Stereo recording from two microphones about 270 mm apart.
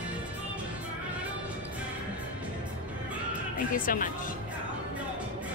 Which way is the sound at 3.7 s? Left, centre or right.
Left.